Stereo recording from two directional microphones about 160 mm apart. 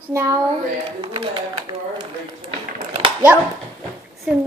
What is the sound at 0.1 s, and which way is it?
Speech, 20° right (ahead or behind).